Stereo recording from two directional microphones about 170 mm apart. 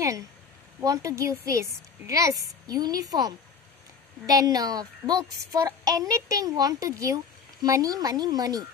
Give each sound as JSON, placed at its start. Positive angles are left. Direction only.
{"t": 0.7, "sound": "speech", "side_deg": -20}